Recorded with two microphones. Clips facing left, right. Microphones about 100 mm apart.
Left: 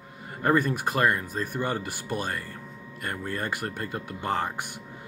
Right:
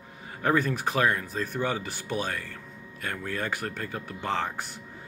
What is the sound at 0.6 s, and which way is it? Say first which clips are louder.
Speech: left 1 dB; 45° left (ahead or behind).